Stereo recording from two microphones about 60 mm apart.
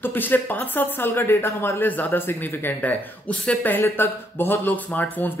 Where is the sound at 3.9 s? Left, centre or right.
Left.